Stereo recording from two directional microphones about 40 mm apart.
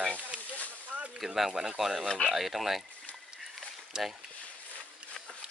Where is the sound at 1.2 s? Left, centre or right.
Centre.